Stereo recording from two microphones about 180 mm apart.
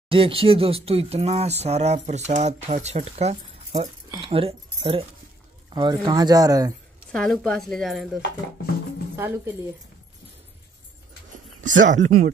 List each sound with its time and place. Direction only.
0.1 s speech: 30° right (ahead or behind)
7.1 s a woman's voice: 5° left (ahead or behind)
11.6 s speech: 45° right (ahead or behind)